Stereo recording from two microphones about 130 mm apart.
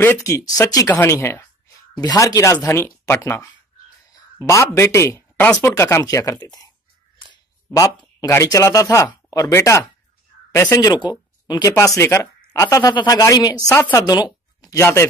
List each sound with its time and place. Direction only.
0.0 s speech: 20° left (ahead or behind)
0.8 s speech: 15° left (ahead or behind)
8.2 s speech: 25° left (ahead or behind)